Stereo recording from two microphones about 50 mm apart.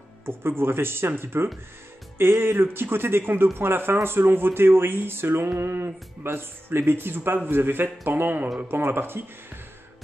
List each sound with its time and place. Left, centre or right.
0.2 s speech: right